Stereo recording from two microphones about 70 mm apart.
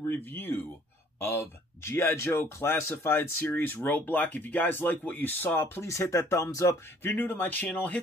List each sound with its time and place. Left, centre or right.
0.1 s speech: left
5.9 s speech: left
7.0 s speech: left